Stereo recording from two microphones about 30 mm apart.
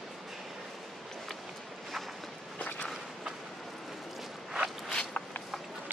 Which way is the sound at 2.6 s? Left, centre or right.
Left.